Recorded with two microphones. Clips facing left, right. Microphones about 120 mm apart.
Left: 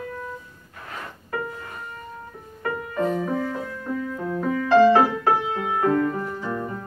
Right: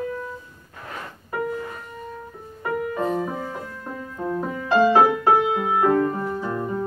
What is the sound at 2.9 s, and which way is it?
Music, 15° right (ahead or behind).